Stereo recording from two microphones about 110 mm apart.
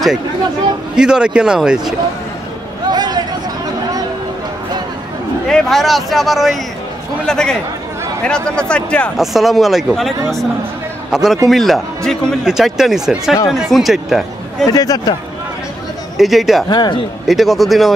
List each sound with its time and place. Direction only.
0.9 s speech: 5° right (ahead or behind)
2.9 s a sound: 40° right (ahead or behind)
5.5 s speech: 5° left (ahead or behind)
8.5 s speech: 10° left (ahead or behind)
9.1 s a man's voice: centre (ahead or behind)
14.7 s speech: 35° left (ahead or behind)
16.2 s speech: centre (ahead or behind)
16.6 s speech: 40° left (ahead or behind)
17.3 s speech: centre (ahead or behind)